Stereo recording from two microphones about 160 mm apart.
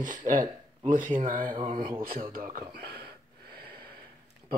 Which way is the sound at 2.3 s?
65° right (ahead or behind).